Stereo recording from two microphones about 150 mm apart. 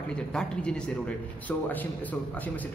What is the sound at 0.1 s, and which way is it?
A man's voice, 5° left (ahead or behind).